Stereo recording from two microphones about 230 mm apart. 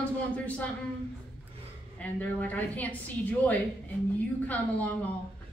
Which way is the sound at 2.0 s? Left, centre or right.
Centre.